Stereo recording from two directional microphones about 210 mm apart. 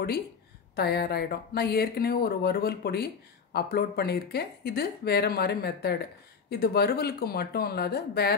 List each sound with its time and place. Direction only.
0.7 s speech: 50° left (ahead or behind)